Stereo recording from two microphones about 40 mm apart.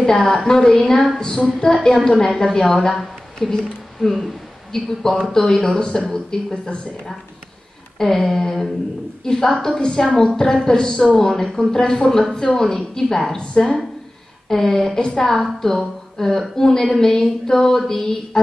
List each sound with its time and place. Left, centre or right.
0.0 s a woman's voice: centre
8.3 s a woman's voice: centre